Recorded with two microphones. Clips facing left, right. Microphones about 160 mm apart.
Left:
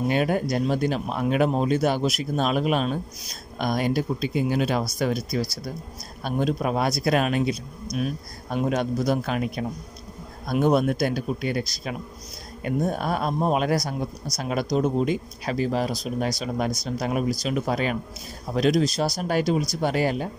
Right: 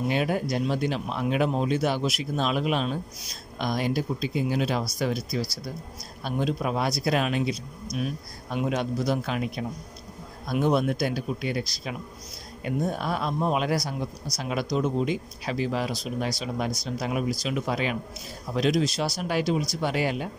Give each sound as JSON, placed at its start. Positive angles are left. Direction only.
{"t": 0.1, "sound": "speech", "side_deg": 50}